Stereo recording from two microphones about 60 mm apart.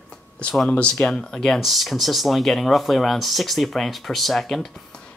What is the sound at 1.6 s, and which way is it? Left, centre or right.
Speech, centre.